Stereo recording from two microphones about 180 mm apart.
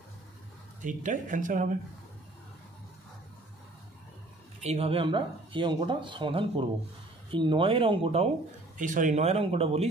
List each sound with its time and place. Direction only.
0.8 s speech: 45° right (ahead or behind)
4.6 s speech: 35° right (ahead or behind)
8.7 s speech: 45° right (ahead or behind)